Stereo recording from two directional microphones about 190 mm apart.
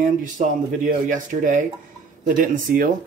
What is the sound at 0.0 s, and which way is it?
Speech, 45° right (ahead or behind).